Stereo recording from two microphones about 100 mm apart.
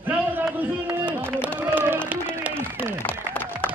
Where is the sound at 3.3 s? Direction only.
15° left (ahead or behind).